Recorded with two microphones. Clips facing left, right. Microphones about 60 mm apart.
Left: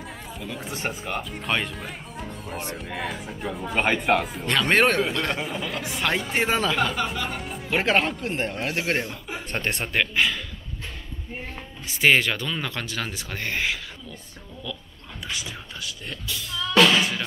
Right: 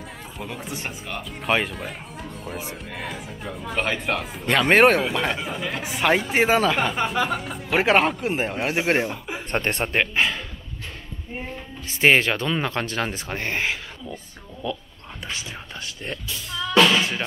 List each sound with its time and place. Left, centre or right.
0.4 s speech: centre
5.8 s speech: centre
6.4 s speech: centre
9.5 s speech: right
12.0 s speech: right
16.5 s drum kit: right